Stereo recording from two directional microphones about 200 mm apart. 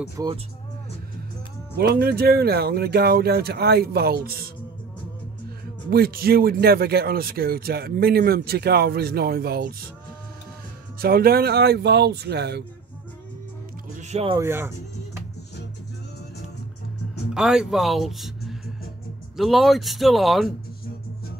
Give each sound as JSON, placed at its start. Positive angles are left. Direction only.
{"t": 0.2, "sound": "speech", "side_deg": -15}
{"t": 1.8, "sound": "speech", "side_deg": -55}
{"t": 5.9, "sound": "speech", "side_deg": -50}
{"t": 11.0, "sound": "speech", "side_deg": -50}
{"t": 13.9, "sound": "music", "side_deg": -35}
{"t": 14.4, "sound": "speech", "side_deg": -10}
{"t": 17.3, "sound": "speech", "side_deg": 0}